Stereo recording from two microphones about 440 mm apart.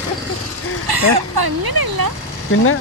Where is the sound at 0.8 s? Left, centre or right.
Right.